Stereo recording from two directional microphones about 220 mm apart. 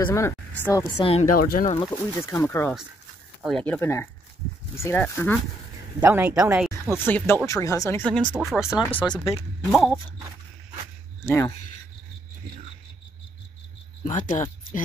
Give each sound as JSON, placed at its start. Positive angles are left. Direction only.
{"t": 0.0, "sound": "speech", "side_deg": 15}
{"t": 1.5, "sound": "speech", "side_deg": 35}
{"t": 1.9, "sound": "speech", "side_deg": 15}
{"t": 5.9, "sound": "speech", "side_deg": -10}
{"t": 7.1, "sound": "speech", "side_deg": 10}
{"t": 8.7, "sound": "speech", "side_deg": 15}
{"t": 9.7, "sound": "dog", "side_deg": 0}
{"t": 11.2, "sound": "speech", "side_deg": 15}
{"t": 14.0, "sound": "speech", "side_deg": 35}